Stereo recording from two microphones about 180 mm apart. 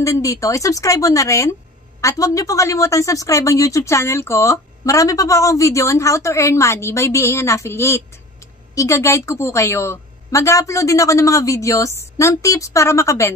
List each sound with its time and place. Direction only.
0.0 s a woman's voice: 15° left (ahead or behind)